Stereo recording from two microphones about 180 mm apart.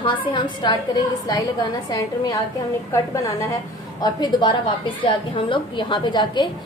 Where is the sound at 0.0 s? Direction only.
25° left (ahead or behind).